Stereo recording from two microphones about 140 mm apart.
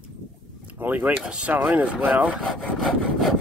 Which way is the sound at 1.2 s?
5° right (ahead or behind).